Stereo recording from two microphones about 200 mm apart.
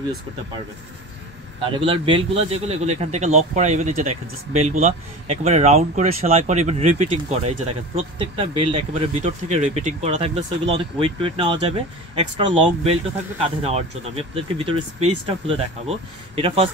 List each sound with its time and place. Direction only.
1.8 s speech: 25° right (ahead or behind)